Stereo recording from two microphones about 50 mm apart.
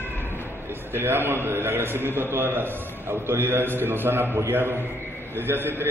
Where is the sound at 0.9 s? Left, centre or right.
Right.